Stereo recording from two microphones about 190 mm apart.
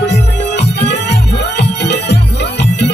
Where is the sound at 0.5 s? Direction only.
60° left (ahead or behind).